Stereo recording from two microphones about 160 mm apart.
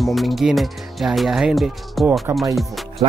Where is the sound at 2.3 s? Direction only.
15° right (ahead or behind).